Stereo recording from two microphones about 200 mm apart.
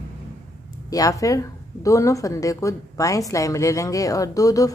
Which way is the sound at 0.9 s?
15° left (ahead or behind).